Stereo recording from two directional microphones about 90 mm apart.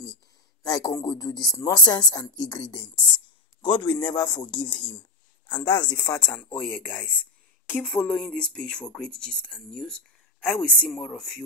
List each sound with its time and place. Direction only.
0.7 s speech: 45° left (ahead or behind); by 4.9 s 60° left (ahead or behind)
5.6 s speech: 50° left (ahead or behind)
6.3 s speech: 15° left (ahead or behind)